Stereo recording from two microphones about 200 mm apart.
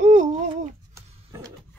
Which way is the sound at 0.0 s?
35° right (ahead or behind).